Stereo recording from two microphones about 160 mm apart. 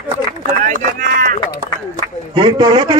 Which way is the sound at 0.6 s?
60° right (ahead or behind).